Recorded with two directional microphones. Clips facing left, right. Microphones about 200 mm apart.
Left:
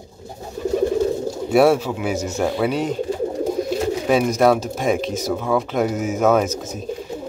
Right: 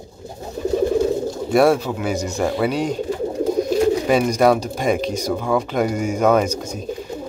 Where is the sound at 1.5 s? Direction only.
5° left (ahead or behind).